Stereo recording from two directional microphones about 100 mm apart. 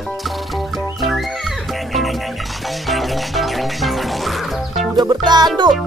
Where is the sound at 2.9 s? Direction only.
Centre (ahead or behind).